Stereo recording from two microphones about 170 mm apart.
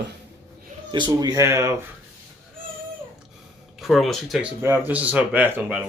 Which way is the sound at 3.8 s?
Centre (ahead or behind).